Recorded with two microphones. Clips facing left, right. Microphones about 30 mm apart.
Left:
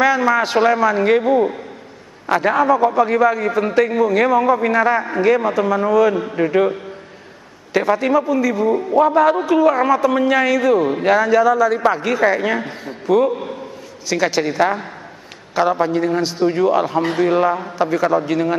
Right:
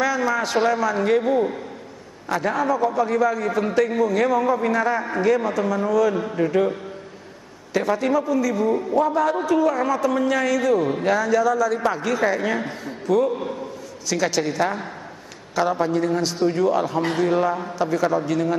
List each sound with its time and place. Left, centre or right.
0.0 s a man's voice: left
1.2 s a man's voice: centre
2.2 s a man's voice: left